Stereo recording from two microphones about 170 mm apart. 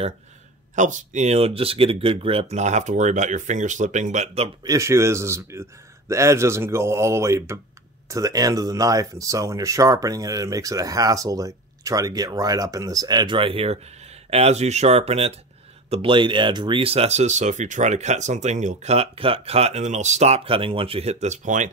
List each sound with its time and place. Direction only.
0.7 s speech: 45° right (ahead or behind)
4.6 s a man's voice: 20° right (ahead or behind); by 21.6 s 45° right (ahead or behind)